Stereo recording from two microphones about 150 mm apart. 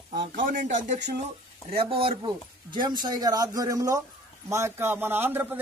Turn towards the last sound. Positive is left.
turn(degrees=-15)  # may be behind; listen again after turning